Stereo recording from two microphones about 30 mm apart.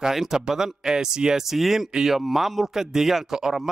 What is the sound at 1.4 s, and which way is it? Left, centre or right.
Speech, centre.